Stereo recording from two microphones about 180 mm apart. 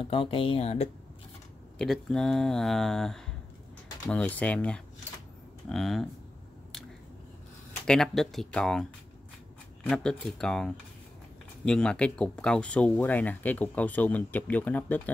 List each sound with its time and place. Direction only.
0.0 s speech: 30° left (ahead or behind)
1.8 s speech: 5° left (ahead or behind)
7.8 s speech: 5° left (ahead or behind)
9.8 s speech: centre (ahead or behind)